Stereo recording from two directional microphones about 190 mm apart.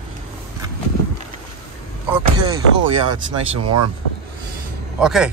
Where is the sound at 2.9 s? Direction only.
30° right (ahead or behind).